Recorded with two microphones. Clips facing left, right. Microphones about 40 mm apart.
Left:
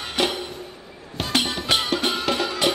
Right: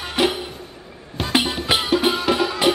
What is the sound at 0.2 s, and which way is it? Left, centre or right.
Music, centre.